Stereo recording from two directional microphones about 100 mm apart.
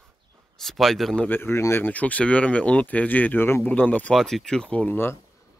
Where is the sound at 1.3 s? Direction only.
20° left (ahead or behind).